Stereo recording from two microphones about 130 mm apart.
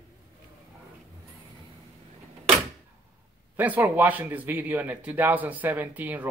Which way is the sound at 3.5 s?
15° right (ahead or behind).